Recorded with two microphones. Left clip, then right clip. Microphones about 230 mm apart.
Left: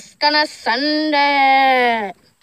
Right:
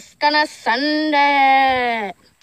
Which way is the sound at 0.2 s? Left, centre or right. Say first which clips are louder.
Left 1 dB; centre.